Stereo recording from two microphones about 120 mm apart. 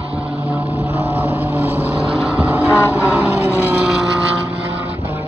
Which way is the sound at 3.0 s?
10° right (ahead or behind).